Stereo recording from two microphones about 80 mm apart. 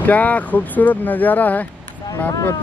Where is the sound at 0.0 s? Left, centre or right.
Centre.